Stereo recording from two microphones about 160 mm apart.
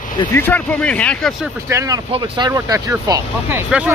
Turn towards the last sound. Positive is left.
turn(degrees=-5)  # may be behind; listen again after turning